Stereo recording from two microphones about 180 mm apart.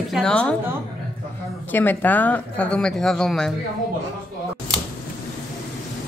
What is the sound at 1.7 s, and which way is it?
Speech, 10° left (ahead or behind).